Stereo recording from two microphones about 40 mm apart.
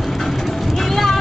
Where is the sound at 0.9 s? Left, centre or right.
Centre.